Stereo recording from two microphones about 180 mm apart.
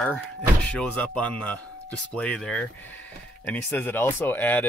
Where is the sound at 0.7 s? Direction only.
5° left (ahead or behind).